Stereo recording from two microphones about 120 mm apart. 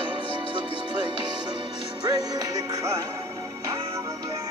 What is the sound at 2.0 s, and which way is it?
Music, 30° right (ahead or behind).